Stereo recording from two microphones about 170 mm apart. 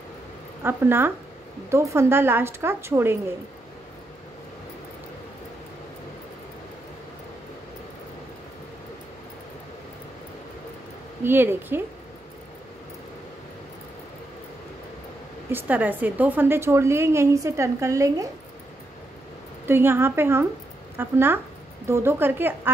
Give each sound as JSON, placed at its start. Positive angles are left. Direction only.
{"t": 0.7, "sound": "a woman's voice", "side_deg": -15}
{"t": 11.2, "sound": "a woman's voice", "side_deg": -15}
{"t": 15.5, "sound": "a woman's voice", "side_deg": -10}
{"t": 19.7, "sound": "a woman's voice", "side_deg": -15}